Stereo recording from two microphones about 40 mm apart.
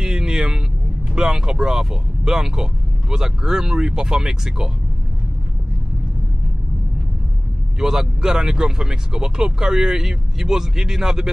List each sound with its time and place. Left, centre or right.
0.0 s vehicle: centre
1.1 s speech: centre
7.8 s speech: centre